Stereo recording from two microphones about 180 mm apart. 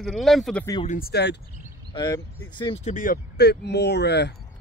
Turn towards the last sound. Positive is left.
turn(degrees=70)  # may be behind; listen again after turning